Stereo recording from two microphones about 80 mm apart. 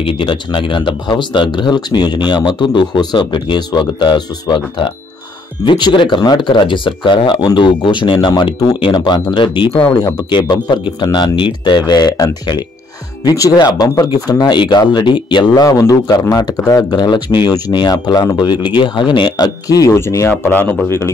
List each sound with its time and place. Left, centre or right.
0.2 s speech: left
5.7 s speech: left
8.7 s speech: left
9.3 s speech: left
9.7 s speech: left
10.3 s speech: left
13.2 s speech: left
15.8 s speech: left
20.0 s speech: left
20.2 s speech: left